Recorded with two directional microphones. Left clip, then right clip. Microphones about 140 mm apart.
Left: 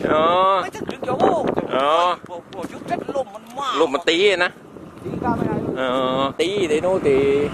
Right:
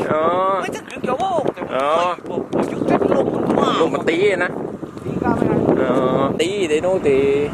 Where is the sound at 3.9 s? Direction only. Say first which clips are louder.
Even; 20° left (ahead or behind).